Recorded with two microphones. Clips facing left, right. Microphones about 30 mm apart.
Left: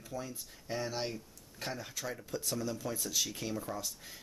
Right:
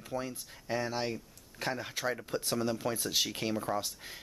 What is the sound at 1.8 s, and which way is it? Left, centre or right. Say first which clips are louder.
Speech: right 6 dB; right.